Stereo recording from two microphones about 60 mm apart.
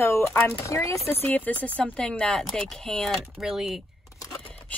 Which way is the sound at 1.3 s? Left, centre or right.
Left.